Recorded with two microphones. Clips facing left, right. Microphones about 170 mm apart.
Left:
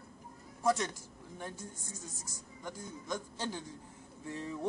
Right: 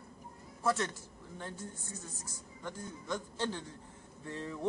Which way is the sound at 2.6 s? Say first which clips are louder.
Right 1 dB; 15° left (ahead or behind).